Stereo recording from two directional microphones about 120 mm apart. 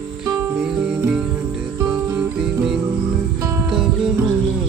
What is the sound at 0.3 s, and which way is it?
Music, 5° right (ahead or behind).